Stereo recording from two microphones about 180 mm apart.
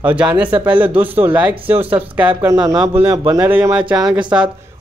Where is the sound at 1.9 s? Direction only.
30° right (ahead or behind).